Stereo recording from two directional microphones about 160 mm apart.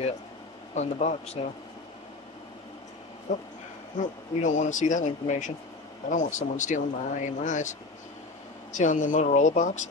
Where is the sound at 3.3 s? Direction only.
50° left (ahead or behind).